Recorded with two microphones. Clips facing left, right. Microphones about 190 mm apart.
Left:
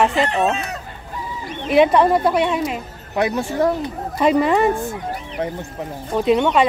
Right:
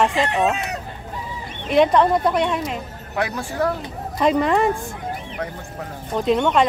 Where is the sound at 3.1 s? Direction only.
20° left (ahead or behind).